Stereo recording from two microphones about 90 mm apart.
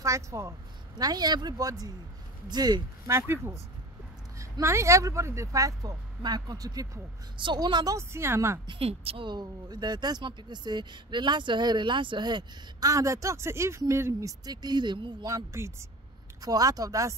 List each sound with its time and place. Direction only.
0.0 s speech: 35° right (ahead or behind)
3.1 s speech: 30° right (ahead or behind)
7.3 s speech: 60° right (ahead or behind)
7.9 s speech: 30° right (ahead or behind)
8.6 s speech: 90° right
9.3 s speech: 50° right (ahead or behind)
12.9 s speech: 35° right (ahead or behind)
14.4 s speech: 50° right (ahead or behind)
15.2 s speech: 35° right (ahead or behind)